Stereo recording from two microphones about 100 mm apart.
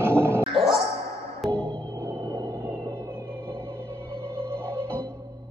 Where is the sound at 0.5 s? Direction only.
Centre (ahead or behind).